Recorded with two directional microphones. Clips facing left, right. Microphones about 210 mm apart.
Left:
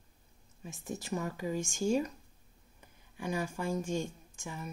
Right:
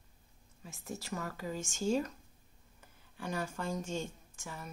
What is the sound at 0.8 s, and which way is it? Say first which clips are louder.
Speech: left 4 dB; 20° left (ahead or behind).